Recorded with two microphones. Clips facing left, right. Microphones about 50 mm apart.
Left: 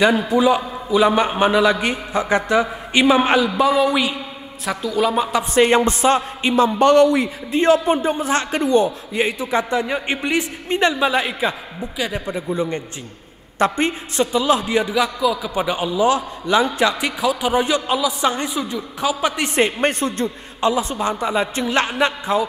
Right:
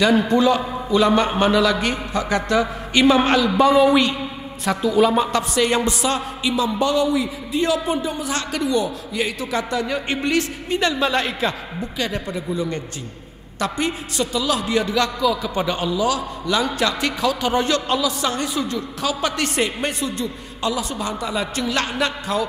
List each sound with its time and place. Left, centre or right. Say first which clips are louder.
0.3 s a man's voice: left 1 dB; centre
3.5 s a woman's voice: right 2 dB; centre
5.5 s a man's voice: left 4 dB; left
7.5 s a man's voice: left 5 dB; left; by 12.4 s centre
12.4 s a man's voice: left 3 dB; left
16.0 s a man's voice: left 4 dB; left
17.0 s a man's voice: left 1 dB; centre
19.6 s speech: left 8 dB; left
20.6 s a man's voice: left 5 dB; left